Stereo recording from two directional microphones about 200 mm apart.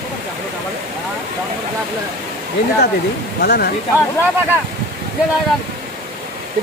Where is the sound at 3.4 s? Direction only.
50° left (ahead or behind).